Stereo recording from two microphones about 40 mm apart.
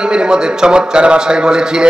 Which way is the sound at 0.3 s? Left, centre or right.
Centre.